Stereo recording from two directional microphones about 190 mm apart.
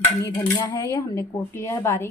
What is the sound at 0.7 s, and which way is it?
A woman's voice, 15° left (ahead or behind).